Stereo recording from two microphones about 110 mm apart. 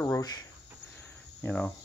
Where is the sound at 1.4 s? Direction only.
15° left (ahead or behind).